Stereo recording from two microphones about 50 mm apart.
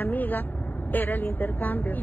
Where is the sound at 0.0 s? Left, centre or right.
Left.